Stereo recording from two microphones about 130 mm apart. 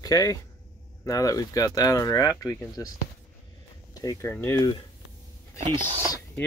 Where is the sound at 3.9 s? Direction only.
25° left (ahead or behind).